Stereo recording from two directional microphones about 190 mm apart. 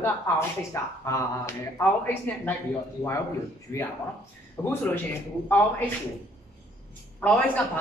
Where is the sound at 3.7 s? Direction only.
15° left (ahead or behind).